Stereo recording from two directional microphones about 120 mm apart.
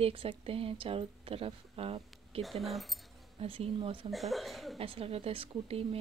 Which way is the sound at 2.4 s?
Centre (ahead or behind).